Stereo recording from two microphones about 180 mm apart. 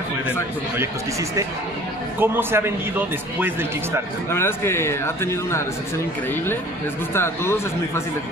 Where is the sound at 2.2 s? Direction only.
10° right (ahead or behind).